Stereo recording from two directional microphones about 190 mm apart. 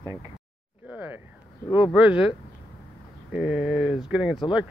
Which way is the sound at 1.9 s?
5° right (ahead or behind).